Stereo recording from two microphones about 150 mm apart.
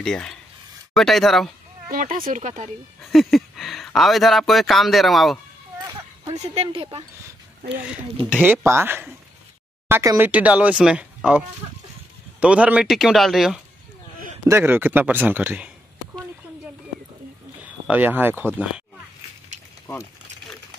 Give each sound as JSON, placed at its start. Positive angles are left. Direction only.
{"t": 0.0, "sound": "a man's voice", "side_deg": 5}
{"t": 1.9, "sound": "speech", "side_deg": -70}
{"t": 3.0, "sound": "speech", "side_deg": 0}
{"t": 6.3, "sound": "speech", "side_deg": -45}
{"t": 8.3, "sound": "a man's voice", "side_deg": -10}
{"t": 14.4, "sound": "speech", "side_deg": -15}
{"t": 17.8, "sound": "speech", "side_deg": -10}